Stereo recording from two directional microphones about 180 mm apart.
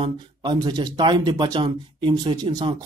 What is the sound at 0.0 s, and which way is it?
Speech, 25° right (ahead or behind).